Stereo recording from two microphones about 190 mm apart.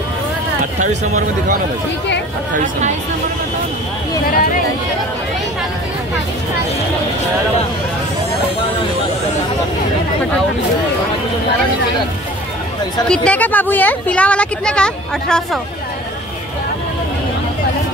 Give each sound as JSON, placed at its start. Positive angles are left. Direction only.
{"t": 0.7, "sound": "speech", "side_deg": -40}
{"t": 2.5, "sound": "speech", "side_deg": -45}
{"t": 13.1, "sound": "a woman's voice", "side_deg": 5}